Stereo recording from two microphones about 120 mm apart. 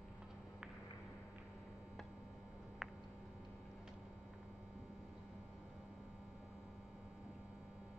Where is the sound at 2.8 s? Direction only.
5° right (ahead or behind).